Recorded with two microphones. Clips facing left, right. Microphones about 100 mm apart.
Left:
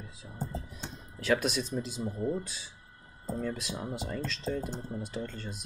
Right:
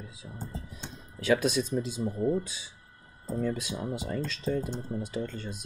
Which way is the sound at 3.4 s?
15° right (ahead or behind).